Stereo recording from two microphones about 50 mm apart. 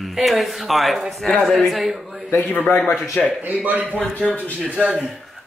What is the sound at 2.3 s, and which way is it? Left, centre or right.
Speech, left.